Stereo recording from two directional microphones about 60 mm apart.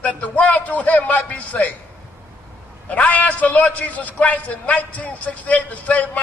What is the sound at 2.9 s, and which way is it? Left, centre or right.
A man's voice, left.